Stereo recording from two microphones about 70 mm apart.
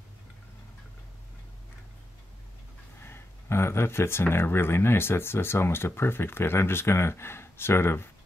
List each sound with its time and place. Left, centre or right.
3.0 s speech: left